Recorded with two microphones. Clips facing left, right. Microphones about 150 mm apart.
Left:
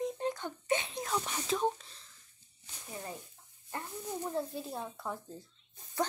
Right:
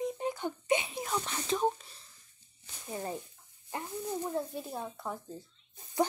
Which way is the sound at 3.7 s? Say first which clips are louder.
Right 2 dB; 15° right (ahead or behind).